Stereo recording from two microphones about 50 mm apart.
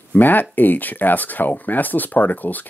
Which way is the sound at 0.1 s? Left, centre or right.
Left.